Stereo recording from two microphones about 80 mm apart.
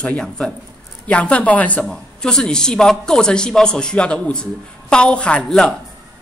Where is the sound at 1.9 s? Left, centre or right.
Centre.